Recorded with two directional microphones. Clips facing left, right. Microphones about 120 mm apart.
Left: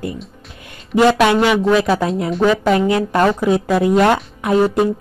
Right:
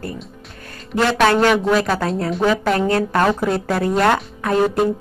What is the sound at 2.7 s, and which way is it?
A woman's voice, 15° left (ahead or behind).